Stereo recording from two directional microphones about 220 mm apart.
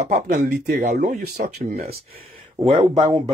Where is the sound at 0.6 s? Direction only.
45° right (ahead or behind).